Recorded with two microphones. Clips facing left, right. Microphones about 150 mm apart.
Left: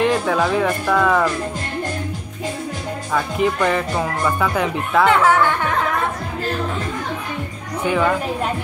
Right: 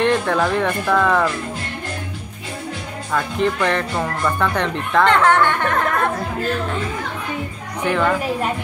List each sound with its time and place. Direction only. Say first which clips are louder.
0.0 s speech: even; 5° left (ahead or behind)
3.1 s speech: even; 5° left (ahead or behind)
7.8 s speech: even; 5° left (ahead or behind)